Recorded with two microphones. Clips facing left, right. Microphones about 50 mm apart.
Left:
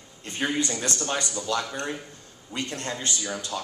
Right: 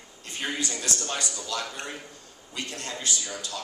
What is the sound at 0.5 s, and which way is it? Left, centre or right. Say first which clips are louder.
A man's voice: left 4 dB; left.